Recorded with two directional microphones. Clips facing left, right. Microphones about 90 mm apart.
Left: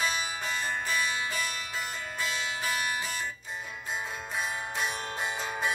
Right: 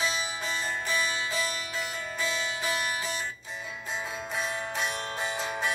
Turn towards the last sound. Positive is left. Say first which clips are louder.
# right 1 dB
turn(degrees=5)  # may be behind; listen again after turning